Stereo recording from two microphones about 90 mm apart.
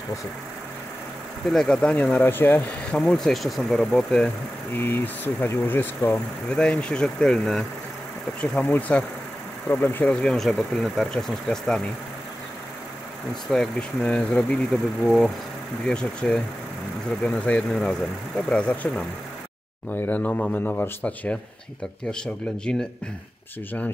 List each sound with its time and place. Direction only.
1.5 s speech: 5° left (ahead or behind); by 2.6 s 25° left (ahead or behind)
2.9 s speech: 10° left (ahead or behind)
4.7 s speech: 25° left (ahead or behind)
6.1 s speech: 10° left (ahead or behind)
8.6 s speech: 20° left (ahead or behind)
10.2 s speech: 5° left (ahead or behind)
13.5 s speech: 10° left (ahead or behind)
15.0 s speech: centre (ahead or behind)
15.9 s speech: 10° left (ahead or behind)